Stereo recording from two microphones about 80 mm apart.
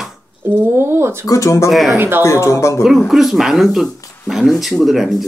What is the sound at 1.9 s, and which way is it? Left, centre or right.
Speech, right.